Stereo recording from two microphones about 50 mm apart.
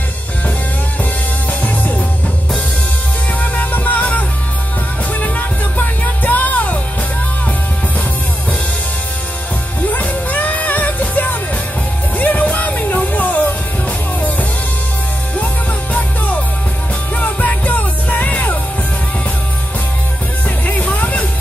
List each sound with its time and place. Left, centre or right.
1.6 s music: left
3.3 s music: left
5.2 s music: left
9.8 s music: left
15.3 s music: left
20.4 s music: left